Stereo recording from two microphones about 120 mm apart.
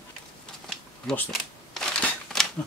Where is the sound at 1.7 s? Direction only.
5° left (ahead or behind).